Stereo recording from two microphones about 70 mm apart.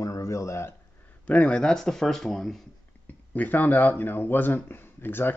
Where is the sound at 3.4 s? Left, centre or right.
Left.